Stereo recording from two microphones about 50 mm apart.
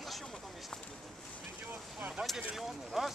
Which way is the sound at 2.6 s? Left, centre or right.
Centre.